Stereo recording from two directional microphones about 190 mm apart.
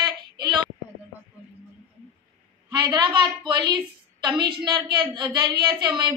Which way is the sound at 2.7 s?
25° right (ahead or behind).